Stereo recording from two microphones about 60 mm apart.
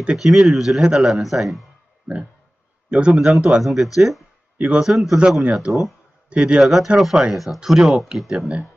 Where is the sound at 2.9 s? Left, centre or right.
Centre.